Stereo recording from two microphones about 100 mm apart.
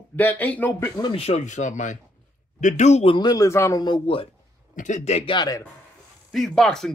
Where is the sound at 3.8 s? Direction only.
55° left (ahead or behind).